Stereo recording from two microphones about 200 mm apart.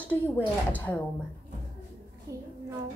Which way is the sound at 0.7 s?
10° left (ahead or behind).